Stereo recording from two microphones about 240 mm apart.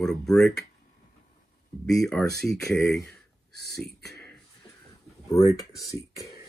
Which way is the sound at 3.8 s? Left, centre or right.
Left.